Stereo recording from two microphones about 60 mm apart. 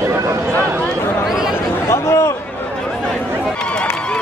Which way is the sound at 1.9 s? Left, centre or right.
Left.